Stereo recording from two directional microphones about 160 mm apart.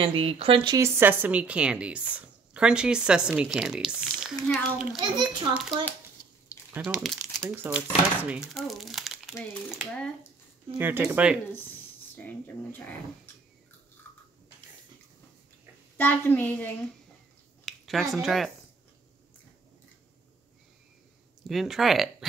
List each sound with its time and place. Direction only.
0.0 s speech: 35° right (ahead or behind)
0.7 s speech: 15° right (ahead or behind); by 7.4 s centre (ahead or behind)
7.4 s speech: 10° right (ahead or behind)
10.8 s speech: 10° right (ahead or behind)
12.2 s speech: 10° left (ahead or behind)
14.0 s a sound: 10° left (ahead or behind)
16.0 s speech: 10° left (ahead or behind)
17.6 s a sound: centre (ahead or behind)
18.1 s speech: centre (ahead or behind)
21.5 s speech: centre (ahead or behind)